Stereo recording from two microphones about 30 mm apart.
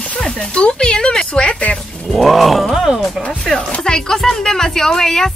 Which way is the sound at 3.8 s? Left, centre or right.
Centre.